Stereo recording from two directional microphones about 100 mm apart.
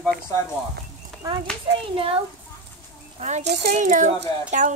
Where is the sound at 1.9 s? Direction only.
65° right (ahead or behind).